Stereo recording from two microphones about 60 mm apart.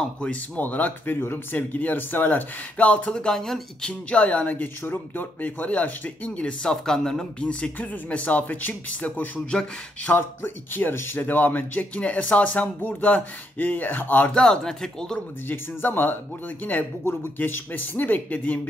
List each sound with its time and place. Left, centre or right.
0.6 s speech: left; by 3.9 s centre
4.1 s speech: left
9.5 s speech: centre
10.1 s speech: left
14.3 s speech: centre
15.4 s speech: left